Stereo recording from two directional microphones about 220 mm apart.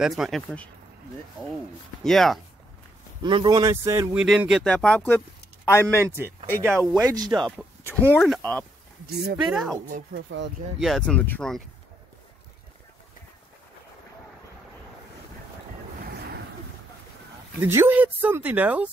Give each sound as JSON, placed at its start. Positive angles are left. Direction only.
{"t": 0.0, "sound": "speech", "side_deg": 0}
{"t": 2.0, "sound": "speech", "side_deg": 0}
{"t": 3.2, "sound": "speech", "side_deg": -20}
{"t": 5.9, "sound": "speech", "side_deg": -10}
{"t": 6.7, "sound": "speech", "side_deg": 5}
{"t": 7.0, "sound": "speech", "side_deg": -15}
{"t": 8.2, "sound": "speech", "side_deg": 5}
{"t": 10.1, "sound": "speech", "side_deg": -50}
{"t": 10.8, "sound": "speech", "side_deg": 0}
{"t": 17.6, "sound": "speech", "side_deg": -10}